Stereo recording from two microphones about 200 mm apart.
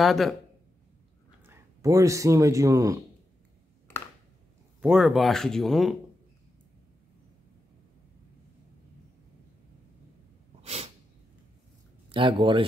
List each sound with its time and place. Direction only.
0.0 s speech: centre (ahead or behind)
1.4 s speech: 15° right (ahead or behind)
4.8 s speech: 5° right (ahead or behind)
10.6 s sneeze: 30° right (ahead or behind)
12.1 s speech: 25° right (ahead or behind)